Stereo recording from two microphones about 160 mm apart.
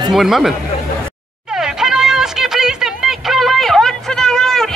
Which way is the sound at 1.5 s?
5° right (ahead or behind).